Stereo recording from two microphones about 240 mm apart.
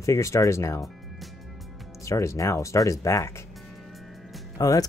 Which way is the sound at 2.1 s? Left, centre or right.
Centre.